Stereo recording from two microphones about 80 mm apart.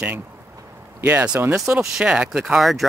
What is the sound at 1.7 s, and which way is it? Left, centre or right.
Speech, centre.